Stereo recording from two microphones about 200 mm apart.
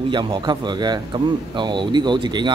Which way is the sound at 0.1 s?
20° right (ahead or behind).